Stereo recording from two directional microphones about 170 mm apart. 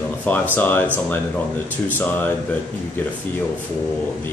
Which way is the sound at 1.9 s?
10° left (ahead or behind).